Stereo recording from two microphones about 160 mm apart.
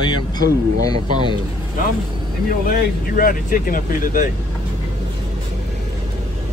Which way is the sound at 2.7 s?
65° left (ahead or behind).